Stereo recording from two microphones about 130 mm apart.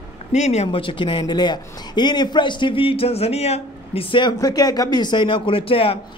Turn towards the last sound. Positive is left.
turn(degrees=45)  # may be behind; listen again after turning